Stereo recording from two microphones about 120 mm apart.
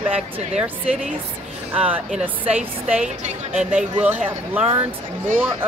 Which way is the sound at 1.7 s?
10° right (ahead or behind).